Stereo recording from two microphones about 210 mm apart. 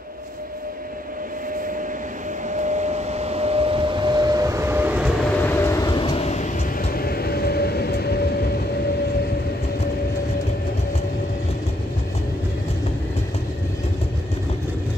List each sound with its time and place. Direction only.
2.5 s vehicle: 35° right (ahead or behind); by 6.5 s 35° left (ahead or behind)
6.8 s train: 45° left (ahead or behind)